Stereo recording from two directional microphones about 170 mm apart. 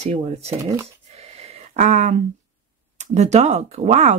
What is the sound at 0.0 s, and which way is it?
Speech, 40° right (ahead or behind).